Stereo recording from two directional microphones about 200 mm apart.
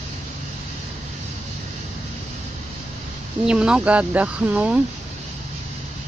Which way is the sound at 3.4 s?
5° right (ahead or behind).